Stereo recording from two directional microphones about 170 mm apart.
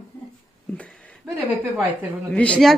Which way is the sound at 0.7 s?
5° left (ahead or behind).